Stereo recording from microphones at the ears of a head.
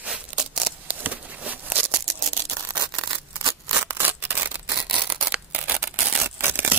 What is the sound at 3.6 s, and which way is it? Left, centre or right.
Scissors, right.